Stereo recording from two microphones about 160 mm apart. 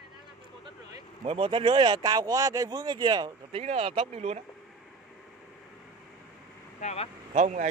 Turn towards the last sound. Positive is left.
turn(degrees=-50)  # may be behind; listen again after turning